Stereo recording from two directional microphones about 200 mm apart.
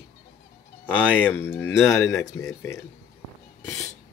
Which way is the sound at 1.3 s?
10° left (ahead or behind).